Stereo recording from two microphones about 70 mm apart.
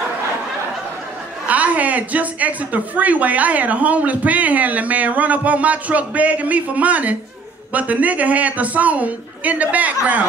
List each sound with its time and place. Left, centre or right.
1.5 s a woman's voice: right